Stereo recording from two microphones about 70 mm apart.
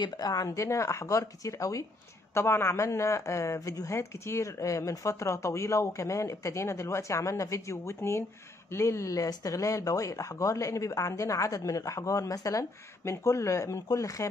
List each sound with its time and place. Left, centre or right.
0.0 s speech: left
2.3 s speech: left